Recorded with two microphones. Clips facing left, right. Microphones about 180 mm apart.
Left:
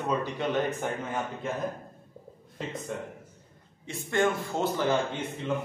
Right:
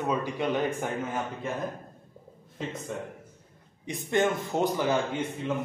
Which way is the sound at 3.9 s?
20° right (ahead or behind).